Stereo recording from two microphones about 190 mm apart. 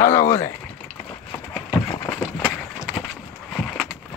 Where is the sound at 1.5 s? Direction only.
10° left (ahead or behind).